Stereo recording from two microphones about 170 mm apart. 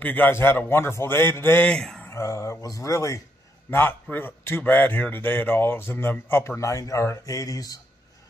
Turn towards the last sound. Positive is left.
turn(degrees=20)  # may be behind; listen again after turning